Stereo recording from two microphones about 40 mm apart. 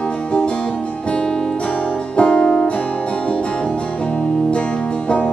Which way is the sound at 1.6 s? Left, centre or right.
Left.